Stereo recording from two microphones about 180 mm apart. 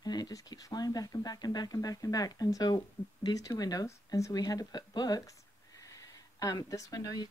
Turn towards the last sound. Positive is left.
turn(degrees=20)  # may be behind; listen again after turning